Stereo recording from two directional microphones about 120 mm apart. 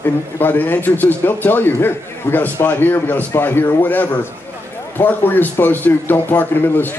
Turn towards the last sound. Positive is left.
turn(degrees=15)  # may be behind; listen again after turning